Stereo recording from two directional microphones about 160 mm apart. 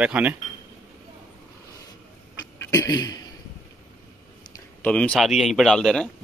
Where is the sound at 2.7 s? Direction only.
20° left (ahead or behind).